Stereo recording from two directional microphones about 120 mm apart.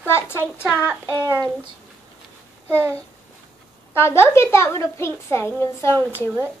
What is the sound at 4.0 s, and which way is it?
Speech, 20° left (ahead or behind).